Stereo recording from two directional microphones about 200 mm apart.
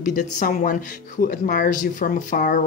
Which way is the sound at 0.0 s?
40° left (ahead or behind).